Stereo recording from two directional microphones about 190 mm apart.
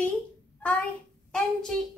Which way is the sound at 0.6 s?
5° left (ahead or behind).